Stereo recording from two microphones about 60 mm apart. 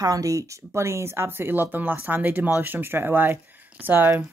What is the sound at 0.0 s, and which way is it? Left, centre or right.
Speech, right.